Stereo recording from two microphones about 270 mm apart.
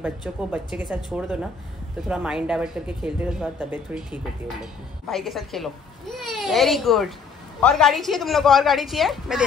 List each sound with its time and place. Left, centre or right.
0.0 s a child's voice: centre